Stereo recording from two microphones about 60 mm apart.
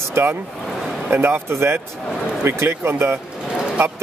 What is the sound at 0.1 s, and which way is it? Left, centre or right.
Speech, right.